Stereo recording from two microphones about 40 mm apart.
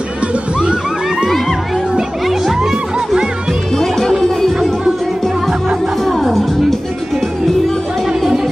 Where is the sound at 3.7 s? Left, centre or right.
Centre.